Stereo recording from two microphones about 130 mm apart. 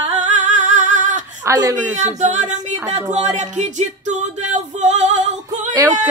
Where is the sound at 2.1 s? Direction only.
65° right (ahead or behind).